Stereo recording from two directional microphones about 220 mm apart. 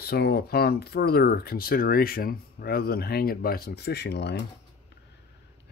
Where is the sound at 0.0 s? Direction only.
45° left (ahead or behind).